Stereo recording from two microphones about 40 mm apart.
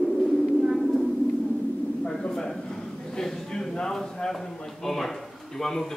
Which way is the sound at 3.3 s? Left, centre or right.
Centre.